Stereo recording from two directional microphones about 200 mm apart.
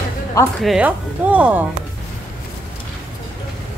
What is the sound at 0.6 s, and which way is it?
Speech, 5° right (ahead or behind).